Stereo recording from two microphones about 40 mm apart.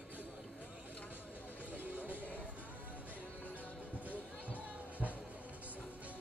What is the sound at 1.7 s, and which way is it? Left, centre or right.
Music, right.